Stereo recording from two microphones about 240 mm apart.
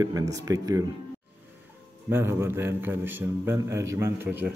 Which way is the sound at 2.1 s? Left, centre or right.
Centre.